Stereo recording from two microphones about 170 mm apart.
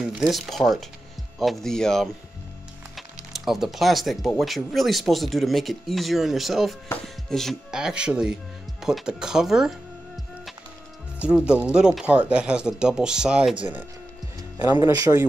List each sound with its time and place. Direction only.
0.3 s speech: centre (ahead or behind)
3.3 s speech: centre (ahead or behind)
11.1 s speech: 5° right (ahead or behind)
14.8 s speech: 20° right (ahead or behind)